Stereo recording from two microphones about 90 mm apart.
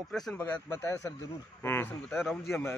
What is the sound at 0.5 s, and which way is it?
A man's voice, 30° left (ahead or behind).